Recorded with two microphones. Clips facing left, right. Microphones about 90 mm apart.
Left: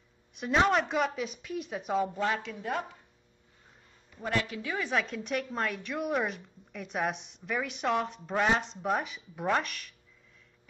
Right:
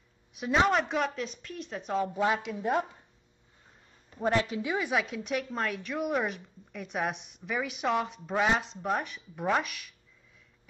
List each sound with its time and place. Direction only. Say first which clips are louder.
0.3 s a woman's voice: even; centre (ahead or behind)
2.1 s speech: right 3 dB; 15° right (ahead or behind)
4.1 s a woman's voice: right 4 dB; 30° right (ahead or behind)
4.9 s a woman's voice: right 1 dB; 5° right (ahead or behind)